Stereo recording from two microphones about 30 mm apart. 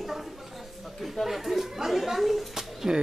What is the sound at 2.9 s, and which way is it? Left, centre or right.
Speech, centre.